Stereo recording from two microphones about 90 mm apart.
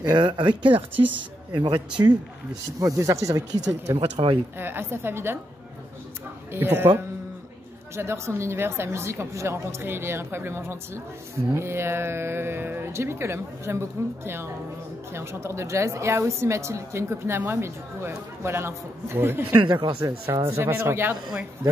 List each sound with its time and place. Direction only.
0.0 s speech: 55° right (ahead or behind)
0.9 s speech: 20° right (ahead or behind)
1.5 s speech: 65° right (ahead or behind)
3.0 s a woman's voice: 35° right (ahead or behind)
4.0 s speech: 75° right (ahead or behind)
4.6 s speech: 25° right (ahead or behind)
6.5 s speech: 25° right (ahead or behind)
7.9 s a woman's voice: 30° right (ahead or behind)
19.6 s speech: 65° right (ahead or behind)
20.0 s a woman's voice: 35° right (ahead or behind)